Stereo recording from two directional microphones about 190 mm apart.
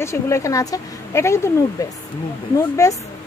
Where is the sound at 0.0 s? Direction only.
15° left (ahead or behind).